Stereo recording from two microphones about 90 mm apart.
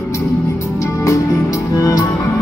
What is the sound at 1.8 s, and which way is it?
Music, 45° left (ahead or behind).